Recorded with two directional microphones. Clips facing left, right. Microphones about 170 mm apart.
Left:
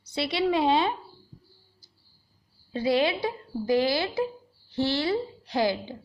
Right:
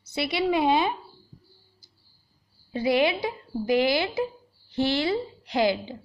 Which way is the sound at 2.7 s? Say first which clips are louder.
Right 1 dB; 15° right (ahead or behind).